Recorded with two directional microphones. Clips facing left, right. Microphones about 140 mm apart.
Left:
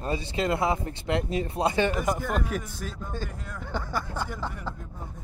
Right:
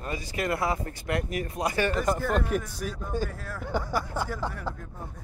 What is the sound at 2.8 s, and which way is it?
Speech, 10° right (ahead or behind).